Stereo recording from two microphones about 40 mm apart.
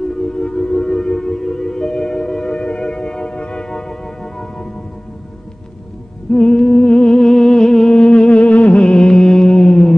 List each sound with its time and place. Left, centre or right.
0.1 s music: centre
6.3 s music: centre